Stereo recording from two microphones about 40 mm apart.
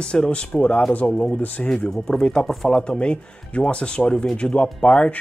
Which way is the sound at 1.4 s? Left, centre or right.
Left.